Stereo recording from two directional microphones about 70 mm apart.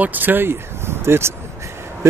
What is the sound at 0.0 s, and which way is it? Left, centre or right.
Speech, right.